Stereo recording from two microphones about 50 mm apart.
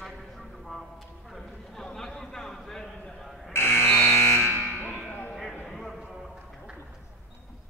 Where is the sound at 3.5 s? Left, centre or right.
Left.